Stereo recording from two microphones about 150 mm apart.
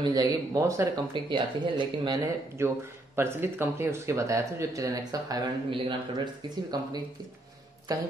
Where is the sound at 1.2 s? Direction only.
30° right (ahead or behind).